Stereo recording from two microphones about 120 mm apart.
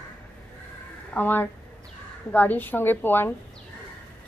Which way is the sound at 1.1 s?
15° left (ahead or behind).